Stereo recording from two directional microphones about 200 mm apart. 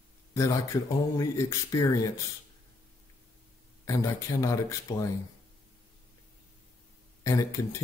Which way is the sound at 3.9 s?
15° left (ahead or behind).